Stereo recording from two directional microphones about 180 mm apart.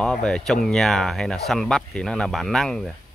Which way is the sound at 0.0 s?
5° left (ahead or behind).